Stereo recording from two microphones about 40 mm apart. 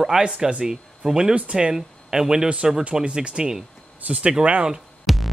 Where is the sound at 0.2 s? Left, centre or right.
Right.